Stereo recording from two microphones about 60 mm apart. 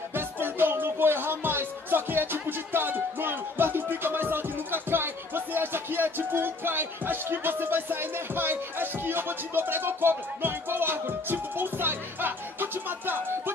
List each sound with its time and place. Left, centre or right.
0.1 s music: right